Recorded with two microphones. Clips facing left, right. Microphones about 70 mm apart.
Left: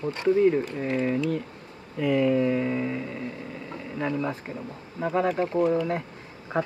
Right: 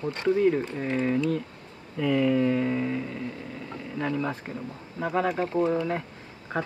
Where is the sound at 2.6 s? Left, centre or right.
Centre.